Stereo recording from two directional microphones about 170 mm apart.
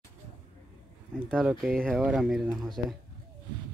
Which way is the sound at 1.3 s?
Centre (ahead or behind).